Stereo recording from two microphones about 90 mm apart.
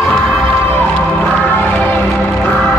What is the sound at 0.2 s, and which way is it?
Crowd, 5° right (ahead or behind).